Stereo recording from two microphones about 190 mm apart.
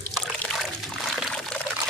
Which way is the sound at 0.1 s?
Centre (ahead or behind).